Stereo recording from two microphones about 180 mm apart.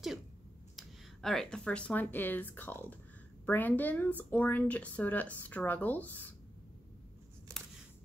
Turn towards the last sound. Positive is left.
turn(degrees=-15)  # may be behind; listen again after turning